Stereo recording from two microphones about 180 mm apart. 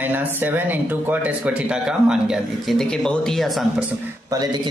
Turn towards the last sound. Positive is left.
turn(degrees=-20)  # may be behind; listen again after turning